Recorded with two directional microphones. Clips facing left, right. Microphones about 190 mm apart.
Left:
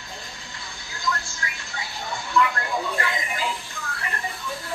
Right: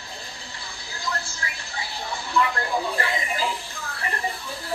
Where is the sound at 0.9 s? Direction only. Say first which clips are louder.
Left 2 dB; 35° right (ahead or behind).